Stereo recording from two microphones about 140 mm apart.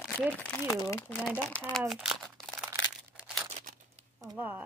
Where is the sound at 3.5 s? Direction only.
55° right (ahead or behind).